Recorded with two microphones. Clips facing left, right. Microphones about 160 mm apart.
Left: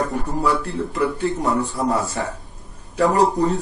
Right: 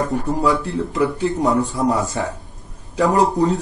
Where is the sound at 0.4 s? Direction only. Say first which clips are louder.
Even; 15° right (ahead or behind).